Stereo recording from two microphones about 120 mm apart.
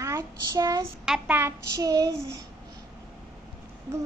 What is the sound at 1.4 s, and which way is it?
A child's voice, 25° right (ahead or behind).